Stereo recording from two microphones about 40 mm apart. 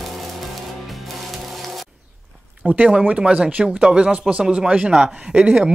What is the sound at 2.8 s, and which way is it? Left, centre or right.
Speech, right.